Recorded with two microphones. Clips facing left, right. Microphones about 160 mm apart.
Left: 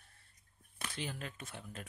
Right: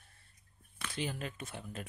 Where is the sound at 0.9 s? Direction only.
15° right (ahead or behind).